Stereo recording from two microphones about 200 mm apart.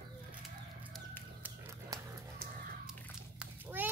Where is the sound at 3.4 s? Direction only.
10° right (ahead or behind).